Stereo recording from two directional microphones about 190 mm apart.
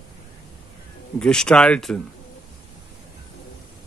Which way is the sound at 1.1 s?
5° left (ahead or behind).